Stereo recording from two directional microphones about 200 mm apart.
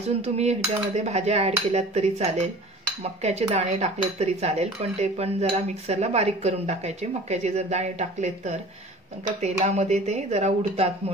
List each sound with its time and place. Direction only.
0.2 s cutlery: 30° right (ahead or behind)